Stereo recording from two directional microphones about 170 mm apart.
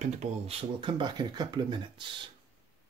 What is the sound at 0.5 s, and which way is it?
Speech, 30° right (ahead or behind).